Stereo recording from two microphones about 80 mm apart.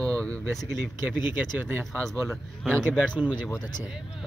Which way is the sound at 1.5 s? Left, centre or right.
Right.